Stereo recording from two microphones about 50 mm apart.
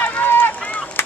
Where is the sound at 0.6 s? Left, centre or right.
Left.